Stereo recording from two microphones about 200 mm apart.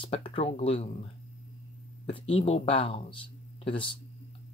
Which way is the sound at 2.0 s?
25° left (ahead or behind).